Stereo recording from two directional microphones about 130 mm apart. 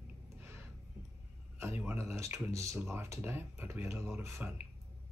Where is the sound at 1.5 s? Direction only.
20° right (ahead or behind).